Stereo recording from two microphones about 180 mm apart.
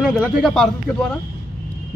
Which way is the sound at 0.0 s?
Centre (ahead or behind).